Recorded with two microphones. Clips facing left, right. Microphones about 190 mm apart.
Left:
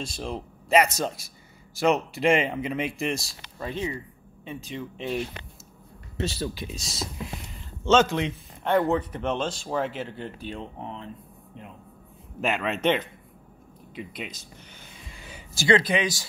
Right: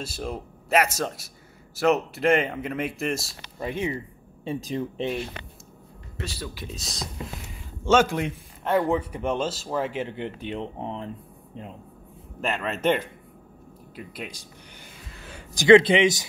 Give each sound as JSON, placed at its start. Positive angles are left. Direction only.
{"t": 0.0, "sound": "speech", "side_deg": -5}
{"t": 3.5, "sound": "a man's voice", "side_deg": -15}
{"t": 4.5, "sound": "speech", "side_deg": -35}
{"t": 6.1, "sound": "speech", "side_deg": 25}
{"t": 6.7, "sound": "speech", "side_deg": 0}
{"t": 7.8, "sound": "a man's voice", "side_deg": -10}
{"t": 10.1, "sound": "speech", "side_deg": -20}
{"t": 12.4, "sound": "a man's voice", "side_deg": 0}
{"t": 15.0, "sound": "a sound", "side_deg": 0}
{"t": 15.5, "sound": "speech", "side_deg": -20}